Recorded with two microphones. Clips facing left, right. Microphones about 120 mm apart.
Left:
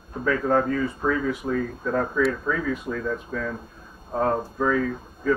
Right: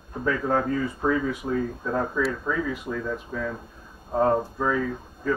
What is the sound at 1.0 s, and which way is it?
Speech, 20° right (ahead or behind).